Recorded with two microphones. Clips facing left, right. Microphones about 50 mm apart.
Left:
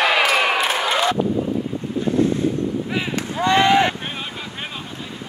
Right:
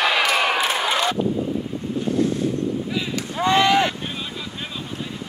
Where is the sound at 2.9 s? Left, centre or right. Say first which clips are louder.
Left 2 dB; left.